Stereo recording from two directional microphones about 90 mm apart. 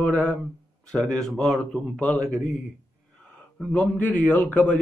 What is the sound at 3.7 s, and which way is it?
A man's voice, 15° left (ahead or behind).